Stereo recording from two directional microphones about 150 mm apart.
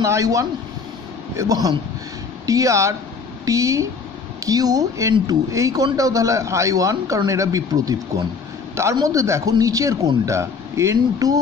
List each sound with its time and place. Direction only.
0.0 s a man's voice: 20° right (ahead or behind)